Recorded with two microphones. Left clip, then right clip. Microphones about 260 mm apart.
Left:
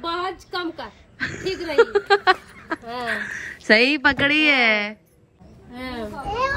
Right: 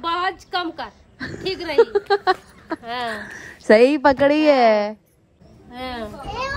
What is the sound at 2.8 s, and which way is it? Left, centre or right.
Speech, centre.